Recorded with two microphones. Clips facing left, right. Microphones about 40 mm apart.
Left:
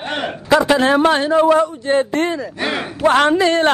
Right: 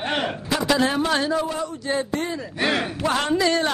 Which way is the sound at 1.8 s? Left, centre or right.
Left.